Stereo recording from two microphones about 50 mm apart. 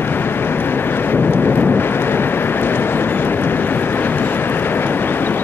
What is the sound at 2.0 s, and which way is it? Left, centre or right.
Vehicle, left.